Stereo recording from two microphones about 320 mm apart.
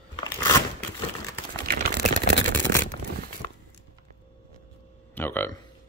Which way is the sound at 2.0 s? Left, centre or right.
Left.